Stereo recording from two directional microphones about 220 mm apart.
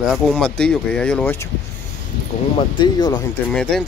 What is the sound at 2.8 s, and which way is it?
Speech, 20° left (ahead or behind).